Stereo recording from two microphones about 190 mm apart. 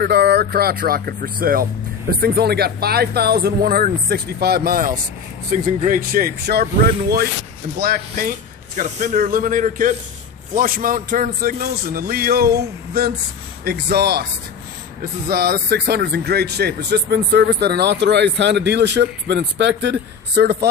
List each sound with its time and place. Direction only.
0.0 s a man's voice: 60° right (ahead or behind)
15.2 s speech: 55° right (ahead or behind)